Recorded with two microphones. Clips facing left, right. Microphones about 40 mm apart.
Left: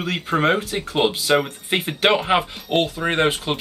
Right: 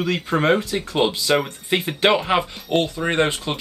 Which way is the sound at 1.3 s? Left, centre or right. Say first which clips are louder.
Even; centre.